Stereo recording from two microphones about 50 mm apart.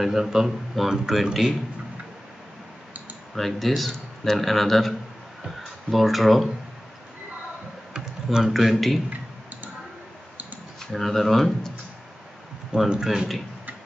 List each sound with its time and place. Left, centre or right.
0.0 s speech: centre
3.3 s speech: centre
7.9 s computer keyboard: centre
8.5 s speech: centre
9.1 s clicking: right
10.9 s speech: centre
13.0 s speech: centre